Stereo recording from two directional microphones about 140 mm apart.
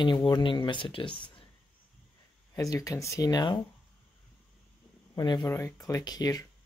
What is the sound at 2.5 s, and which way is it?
Speech, 25° left (ahead or behind).